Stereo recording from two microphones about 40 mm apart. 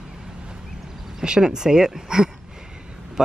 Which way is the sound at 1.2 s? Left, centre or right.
Centre.